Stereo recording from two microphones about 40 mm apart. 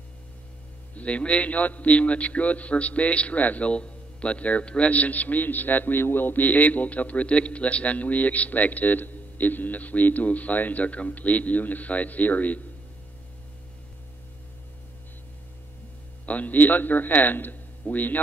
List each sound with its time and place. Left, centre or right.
0.9 s a man's voice: left
16.3 s a man's voice: left